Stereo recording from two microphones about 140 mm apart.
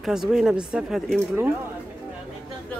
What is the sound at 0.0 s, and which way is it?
Speech, 5° right (ahead or behind).